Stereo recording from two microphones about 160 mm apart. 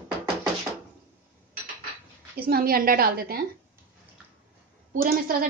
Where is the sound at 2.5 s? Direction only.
65° right (ahead or behind).